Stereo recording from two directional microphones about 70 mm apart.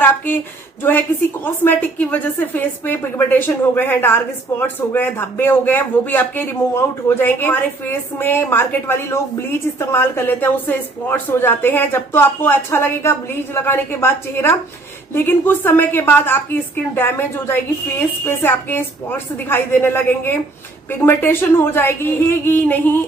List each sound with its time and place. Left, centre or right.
0.8 s a woman's voice: left